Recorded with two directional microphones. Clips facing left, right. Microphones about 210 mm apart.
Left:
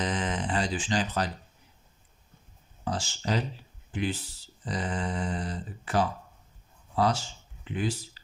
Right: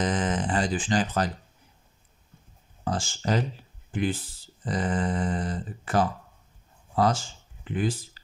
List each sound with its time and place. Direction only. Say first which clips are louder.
0.0 s speech: right 4 dB; 50° right (ahead or behind)
2.8 s speech: right 3 dB; 50° right (ahead or behind)